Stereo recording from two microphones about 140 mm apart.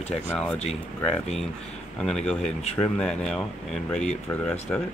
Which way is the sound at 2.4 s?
50° left (ahead or behind).